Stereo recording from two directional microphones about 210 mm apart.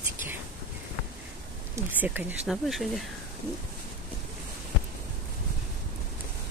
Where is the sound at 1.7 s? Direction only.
10° right (ahead or behind).